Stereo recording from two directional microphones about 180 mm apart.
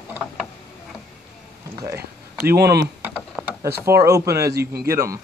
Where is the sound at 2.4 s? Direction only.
60° right (ahead or behind).